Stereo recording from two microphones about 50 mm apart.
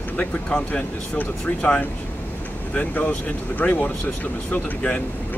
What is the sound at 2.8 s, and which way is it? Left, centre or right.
Speech, left.